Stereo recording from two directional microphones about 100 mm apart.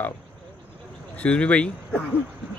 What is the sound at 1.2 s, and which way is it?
Speech, 10° left (ahead or behind).